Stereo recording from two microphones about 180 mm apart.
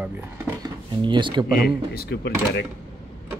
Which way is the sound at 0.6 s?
25° right (ahead or behind).